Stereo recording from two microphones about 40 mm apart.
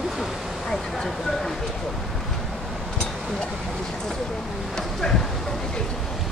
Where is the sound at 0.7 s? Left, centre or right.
Centre.